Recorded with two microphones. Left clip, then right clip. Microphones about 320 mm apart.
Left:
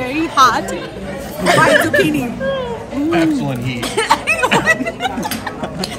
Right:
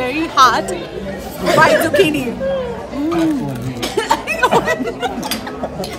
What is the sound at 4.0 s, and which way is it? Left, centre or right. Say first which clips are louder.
Music: left 3 dB; left.